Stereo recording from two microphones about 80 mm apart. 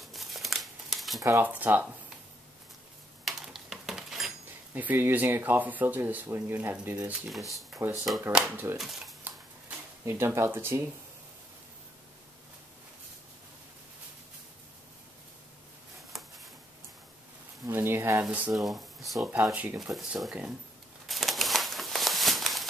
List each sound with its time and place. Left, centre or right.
0.0 s crumpling: centre
1.4 s speech: right
3.3 s dishes: centre
4.7 s speech: right
7.2 s speech: centre
10.0 s speech: right
16.1 s a sound: centre
17.6 s speech: right
18.5 s speech: centre
19.5 s speech: centre
19.8 s speech: centre
21.1 s a sound: centre